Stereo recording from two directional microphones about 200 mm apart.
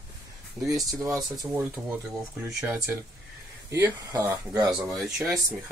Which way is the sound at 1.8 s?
Centre (ahead or behind).